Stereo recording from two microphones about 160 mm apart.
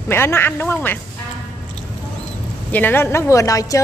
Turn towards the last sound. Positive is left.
turn(degrees=20)  # may be behind; listen again after turning